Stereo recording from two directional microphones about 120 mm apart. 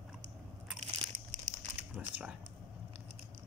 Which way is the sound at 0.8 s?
70° right (ahead or behind).